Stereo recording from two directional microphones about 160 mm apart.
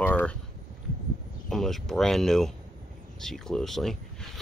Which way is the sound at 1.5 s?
Centre (ahead or behind).